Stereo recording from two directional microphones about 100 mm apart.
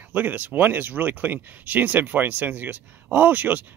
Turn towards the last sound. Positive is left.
turn(degrees=-15)  # may be behind; listen again after turning